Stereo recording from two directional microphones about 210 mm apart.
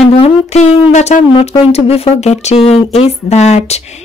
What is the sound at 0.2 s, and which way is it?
Speech, 30° left (ahead or behind).